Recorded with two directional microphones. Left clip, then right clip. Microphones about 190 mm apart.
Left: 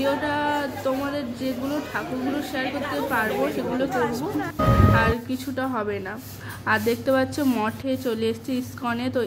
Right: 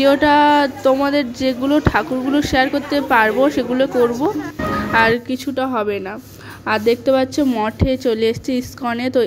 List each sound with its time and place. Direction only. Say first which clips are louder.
0.0 s speech: right 12 dB; 45° right (ahead or behind)
4.9 s speech: right 8 dB; 45° right (ahead or behind)
5.3 s a woman's voice: right 7 dB; 35° right (ahead or behind)
7.8 s a woman's voice: right 8 dB; 30° right (ahead or behind)